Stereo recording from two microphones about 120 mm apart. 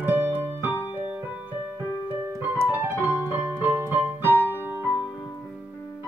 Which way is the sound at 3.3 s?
15° right (ahead or behind).